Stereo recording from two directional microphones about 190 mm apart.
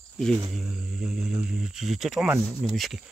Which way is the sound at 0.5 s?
5° right (ahead or behind).